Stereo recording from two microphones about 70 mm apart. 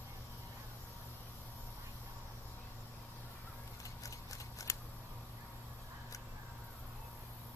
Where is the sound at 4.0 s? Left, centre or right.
Left.